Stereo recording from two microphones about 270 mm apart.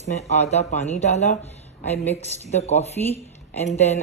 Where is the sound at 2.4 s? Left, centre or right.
Left.